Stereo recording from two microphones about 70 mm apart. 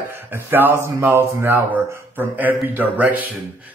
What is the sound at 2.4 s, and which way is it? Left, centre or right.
Speech, right.